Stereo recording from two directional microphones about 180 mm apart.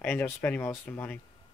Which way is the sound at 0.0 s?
10° left (ahead or behind).